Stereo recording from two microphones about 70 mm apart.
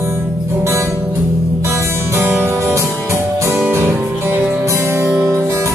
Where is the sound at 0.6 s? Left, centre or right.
Right.